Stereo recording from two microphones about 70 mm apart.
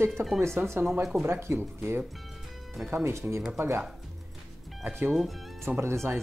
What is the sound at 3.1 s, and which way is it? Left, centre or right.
Speech, right.